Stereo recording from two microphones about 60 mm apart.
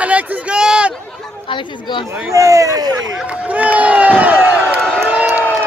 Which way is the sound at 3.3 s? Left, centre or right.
Right.